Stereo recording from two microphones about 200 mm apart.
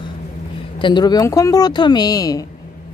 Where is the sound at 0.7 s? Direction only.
25° left (ahead or behind).